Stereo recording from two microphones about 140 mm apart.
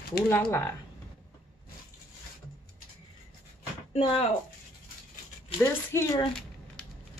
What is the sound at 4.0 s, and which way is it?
Speech, 45° left (ahead or behind).